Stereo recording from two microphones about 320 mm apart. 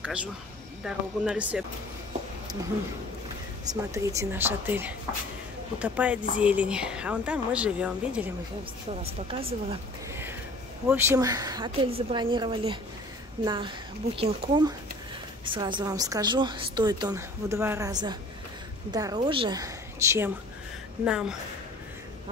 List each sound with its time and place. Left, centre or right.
0.0 s a woman's voice: centre
3.6 s a woman's voice: centre
9.3 s a woman's voice: centre